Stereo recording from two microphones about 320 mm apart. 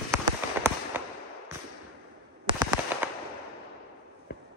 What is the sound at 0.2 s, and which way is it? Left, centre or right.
Fireworks, centre.